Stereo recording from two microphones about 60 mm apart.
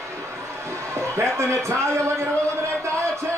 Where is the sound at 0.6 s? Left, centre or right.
Right.